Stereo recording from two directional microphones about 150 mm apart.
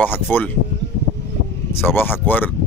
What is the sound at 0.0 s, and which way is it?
Speech, 10° left (ahead or behind).